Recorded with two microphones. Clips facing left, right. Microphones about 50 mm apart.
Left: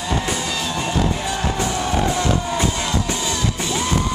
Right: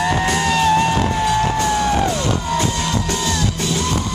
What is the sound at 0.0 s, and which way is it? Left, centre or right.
Music, right.